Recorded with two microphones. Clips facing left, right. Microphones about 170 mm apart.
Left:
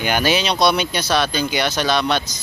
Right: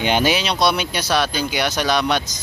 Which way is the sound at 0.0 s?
25° right (ahead or behind).